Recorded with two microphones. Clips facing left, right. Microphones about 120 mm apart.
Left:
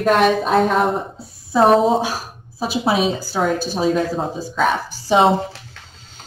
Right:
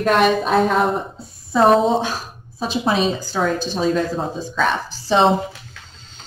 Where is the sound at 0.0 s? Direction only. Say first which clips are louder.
Left 1 dB; centre (ahead or behind).